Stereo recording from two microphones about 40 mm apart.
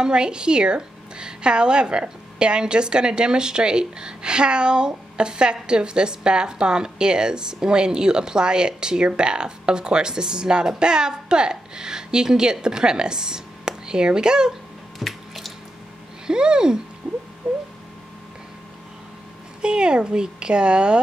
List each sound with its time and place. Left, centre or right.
0.0 s a woman's voice: right
15.0 s water: centre
16.3 s a woman's voice: centre
19.6 s a woman's voice: right